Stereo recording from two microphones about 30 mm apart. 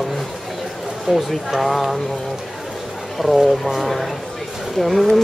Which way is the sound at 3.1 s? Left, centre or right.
Centre.